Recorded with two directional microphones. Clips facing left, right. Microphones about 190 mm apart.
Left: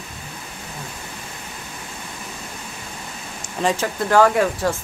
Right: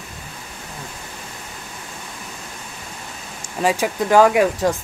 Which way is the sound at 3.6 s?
10° right (ahead or behind).